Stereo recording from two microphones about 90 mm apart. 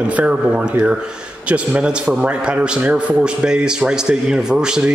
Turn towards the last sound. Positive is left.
turn(degrees=-10)  # may be behind; listen again after turning